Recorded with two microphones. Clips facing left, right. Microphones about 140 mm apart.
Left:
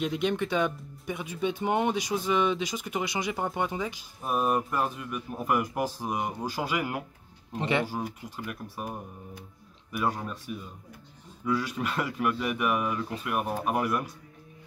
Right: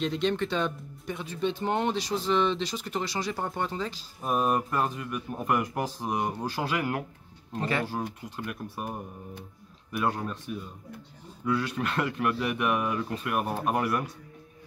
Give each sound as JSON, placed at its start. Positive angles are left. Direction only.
{"t": 0.0, "sound": "speech", "side_deg": 10}
{"t": 7.9, "sound": "speech", "side_deg": 5}
{"t": 9.9, "sound": "speech", "side_deg": 5}